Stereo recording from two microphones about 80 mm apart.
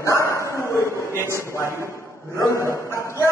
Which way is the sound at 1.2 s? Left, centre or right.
Left.